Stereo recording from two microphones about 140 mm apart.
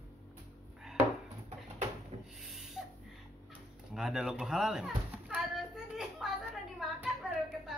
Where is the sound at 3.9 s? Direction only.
5° right (ahead or behind).